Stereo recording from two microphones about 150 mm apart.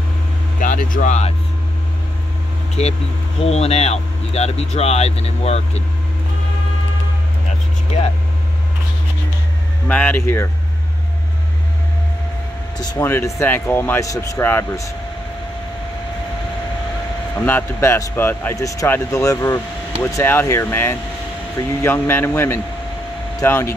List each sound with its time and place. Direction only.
0.6 s speech: 60° left (ahead or behind)
2.8 s speech: 45° left (ahead or behind)
9.8 s speech: 10° left (ahead or behind)
12.7 s speech: 25° left (ahead or behind)
13.0 s speech: 15° left (ahead or behind)
17.4 s speech: 15° left (ahead or behind)